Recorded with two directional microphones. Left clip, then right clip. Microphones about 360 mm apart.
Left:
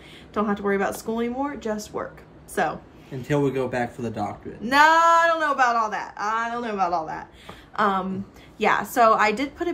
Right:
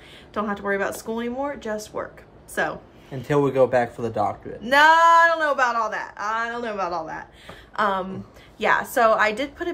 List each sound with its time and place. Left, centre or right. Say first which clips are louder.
0.3 s speech: left 1 dB; centre
3.1 s speech: right 2 dB; centre
4.6 s speech: right 2 dB; centre